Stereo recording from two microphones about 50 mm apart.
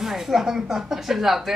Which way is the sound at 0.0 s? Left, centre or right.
Centre.